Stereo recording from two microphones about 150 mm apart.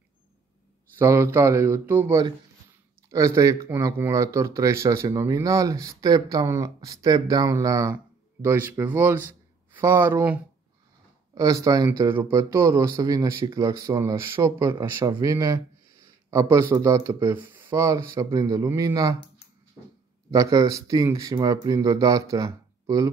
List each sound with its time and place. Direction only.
0.9 s speech: 15° right (ahead or behind)
11.3 s speech: 25° right (ahead or behind)
20.3 s speech: 25° right (ahead or behind)